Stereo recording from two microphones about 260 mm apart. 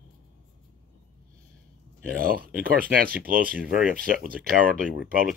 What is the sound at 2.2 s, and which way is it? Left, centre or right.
Speech, right.